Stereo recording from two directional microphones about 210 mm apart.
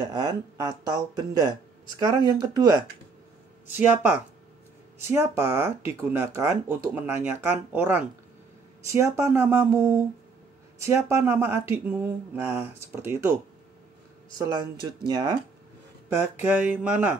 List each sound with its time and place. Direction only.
0.0 s speech: 20° right (ahead or behind)
3.7 s speech: 10° right (ahead or behind)
14.4 s speech: 20° right (ahead or behind)
16.1 s speech: 10° right (ahead or behind)